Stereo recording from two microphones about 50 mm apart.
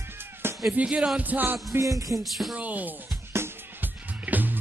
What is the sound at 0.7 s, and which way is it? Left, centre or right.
Music, right.